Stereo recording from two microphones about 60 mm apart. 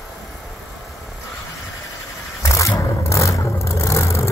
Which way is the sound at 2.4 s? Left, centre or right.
Left.